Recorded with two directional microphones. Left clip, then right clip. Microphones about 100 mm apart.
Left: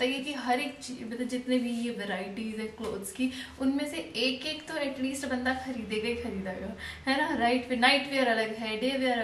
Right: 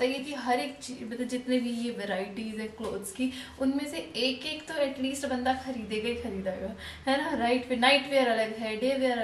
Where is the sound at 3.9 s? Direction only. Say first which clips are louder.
Even; 15° right (ahead or behind).